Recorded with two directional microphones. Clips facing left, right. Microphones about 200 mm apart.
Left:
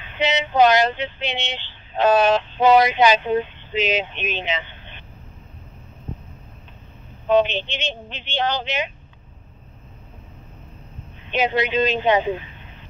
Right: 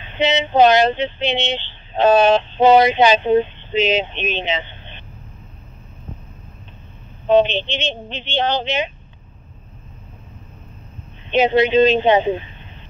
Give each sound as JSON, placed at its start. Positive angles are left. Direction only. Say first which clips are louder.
{"t": 0.0, "sound": "speech", "louder": "right 4 dB", "side_deg": -25}
{"t": 7.2, "sound": "speech", "louder": "right 3 dB", "side_deg": -25}
{"t": 11.2, "sound": "speech", "louder": "right 6 dB", "side_deg": -25}